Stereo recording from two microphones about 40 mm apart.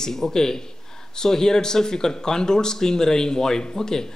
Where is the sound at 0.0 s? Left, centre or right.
Centre.